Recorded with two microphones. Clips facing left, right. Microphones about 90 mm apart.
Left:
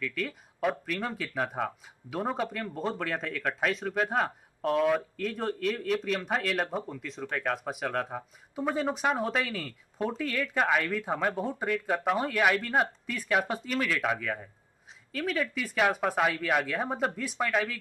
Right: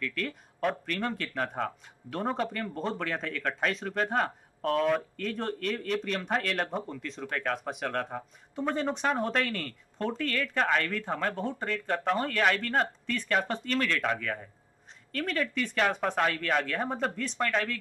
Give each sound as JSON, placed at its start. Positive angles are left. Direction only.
{"t": 0.0, "sound": "speech", "side_deg": 0}